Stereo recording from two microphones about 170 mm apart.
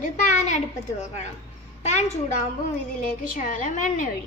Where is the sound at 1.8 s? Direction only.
40° left (ahead or behind).